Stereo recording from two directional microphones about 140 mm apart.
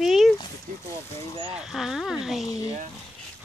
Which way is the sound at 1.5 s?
5° right (ahead or behind).